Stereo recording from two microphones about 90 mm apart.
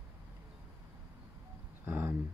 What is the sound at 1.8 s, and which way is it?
Speech, 25° right (ahead or behind).